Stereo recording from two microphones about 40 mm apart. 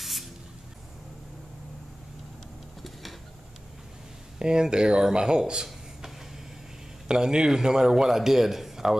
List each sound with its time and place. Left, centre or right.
0.0 s spray: centre
2.8 s a sound: centre
4.4 s speech: right
7.1 s a man's voice: centre